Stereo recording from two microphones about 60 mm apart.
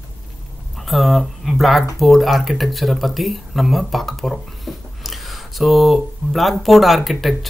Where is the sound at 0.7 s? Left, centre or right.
Centre.